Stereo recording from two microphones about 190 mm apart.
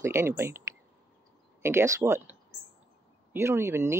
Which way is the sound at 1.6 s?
15° right (ahead or behind).